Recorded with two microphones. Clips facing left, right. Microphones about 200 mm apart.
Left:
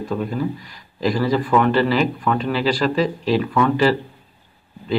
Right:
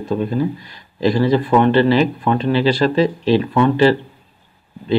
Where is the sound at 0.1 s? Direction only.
25° right (ahead or behind).